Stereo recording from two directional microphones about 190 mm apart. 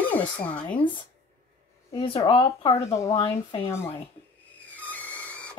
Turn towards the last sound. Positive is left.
turn(degrees=5)  # may be behind; listen again after turning